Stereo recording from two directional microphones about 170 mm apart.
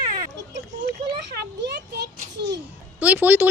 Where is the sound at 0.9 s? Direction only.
75° right (ahead or behind).